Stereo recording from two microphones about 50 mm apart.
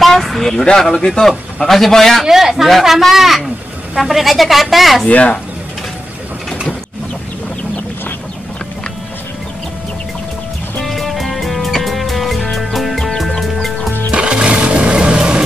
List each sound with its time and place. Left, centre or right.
0.0 s speech: centre
2.2 s speech: centre
5.0 s speech: left
10.8 s music: centre
14.1 s a sound: right